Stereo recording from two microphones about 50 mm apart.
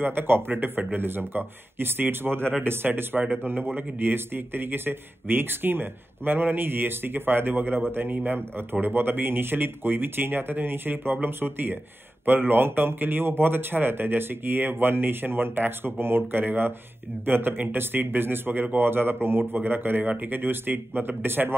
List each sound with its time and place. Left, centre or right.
0.0 s speech: right
20.3 s speech: right